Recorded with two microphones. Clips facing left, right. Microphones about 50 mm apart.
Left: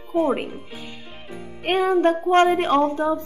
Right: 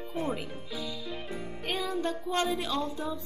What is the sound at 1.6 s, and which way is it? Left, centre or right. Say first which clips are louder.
A woman's voice: left 14 dB; left.